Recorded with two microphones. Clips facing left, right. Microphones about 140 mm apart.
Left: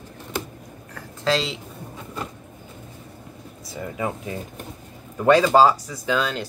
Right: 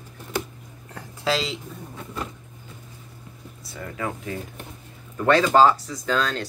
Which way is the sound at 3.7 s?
20° left (ahead or behind).